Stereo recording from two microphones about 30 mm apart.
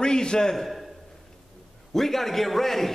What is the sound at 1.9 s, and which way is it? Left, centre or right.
A man's voice, centre.